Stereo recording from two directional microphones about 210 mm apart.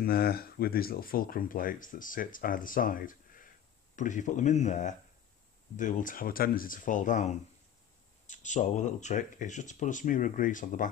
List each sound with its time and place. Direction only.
0.0 s speech: 45° left (ahead or behind)